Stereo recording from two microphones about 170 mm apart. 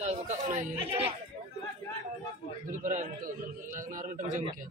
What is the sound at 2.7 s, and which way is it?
A man's voice, 50° right (ahead or behind).